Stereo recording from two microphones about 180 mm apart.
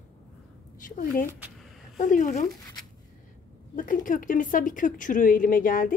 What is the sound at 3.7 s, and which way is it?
Speech, 45° left (ahead or behind).